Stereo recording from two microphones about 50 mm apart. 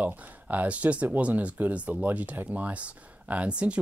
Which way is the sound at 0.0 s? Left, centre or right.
Right.